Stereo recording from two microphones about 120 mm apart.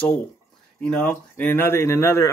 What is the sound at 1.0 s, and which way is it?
Speech, 15° left (ahead or behind).